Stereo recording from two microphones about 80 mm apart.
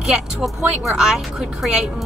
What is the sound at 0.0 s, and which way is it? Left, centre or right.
A woman's voice, centre.